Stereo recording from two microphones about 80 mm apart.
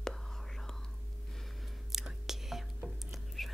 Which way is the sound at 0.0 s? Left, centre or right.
Centre.